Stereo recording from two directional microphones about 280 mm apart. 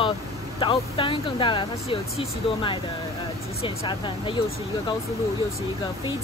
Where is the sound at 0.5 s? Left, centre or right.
Centre.